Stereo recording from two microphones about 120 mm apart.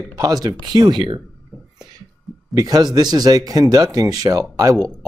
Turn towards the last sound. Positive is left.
turn(degrees=-30)  # may be behind; listen again after turning